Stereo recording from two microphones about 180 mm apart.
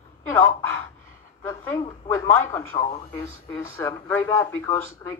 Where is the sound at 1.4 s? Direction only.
15° left (ahead or behind).